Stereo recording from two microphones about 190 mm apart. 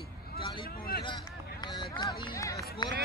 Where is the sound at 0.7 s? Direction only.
50° left (ahead or behind).